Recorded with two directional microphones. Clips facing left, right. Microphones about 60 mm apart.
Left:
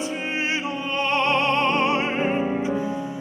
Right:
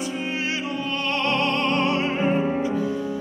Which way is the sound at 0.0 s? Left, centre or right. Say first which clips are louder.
Left 1 dB; left.